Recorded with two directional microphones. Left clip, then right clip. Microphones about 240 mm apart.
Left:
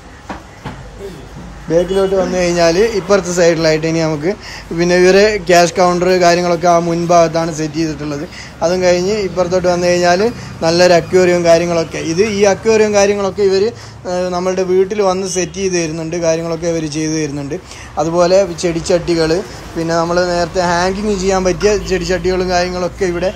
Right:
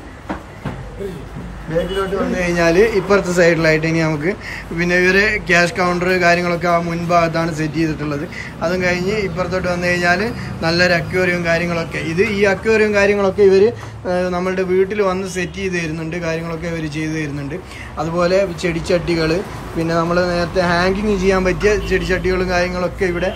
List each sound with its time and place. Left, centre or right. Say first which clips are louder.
1.7 s a man's voice: left 7 dB; centre